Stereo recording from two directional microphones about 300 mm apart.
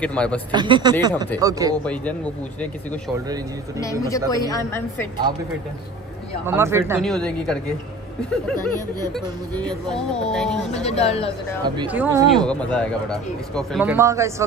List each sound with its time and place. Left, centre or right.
0.0 s speech: centre
0.5 s speech: centre
3.8 s a man's voice: centre
6.4 s speech: centre
9.1 s speech: centre
10.7 s speech: left
11.6 s speech: centre
12.4 s speech: centre